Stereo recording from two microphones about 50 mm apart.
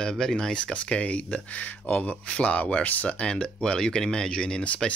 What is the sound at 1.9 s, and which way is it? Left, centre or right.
Speech, left.